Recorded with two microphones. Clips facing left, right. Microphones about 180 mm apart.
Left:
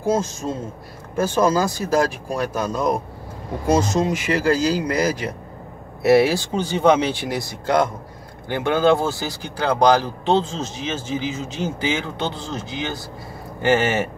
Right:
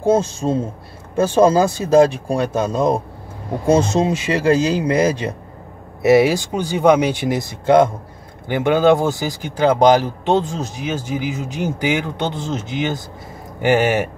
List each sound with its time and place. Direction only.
0.0 s speech: 30° right (ahead or behind); by 14.0 s 10° right (ahead or behind)